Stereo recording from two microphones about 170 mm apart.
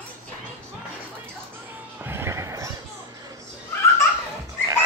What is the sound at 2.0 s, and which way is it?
Music, 15° right (ahead or behind).